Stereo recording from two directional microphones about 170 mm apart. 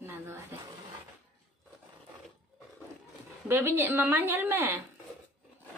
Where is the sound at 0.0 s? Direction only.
15° right (ahead or behind).